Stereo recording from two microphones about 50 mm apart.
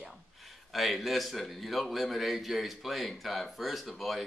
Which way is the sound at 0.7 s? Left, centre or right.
Centre.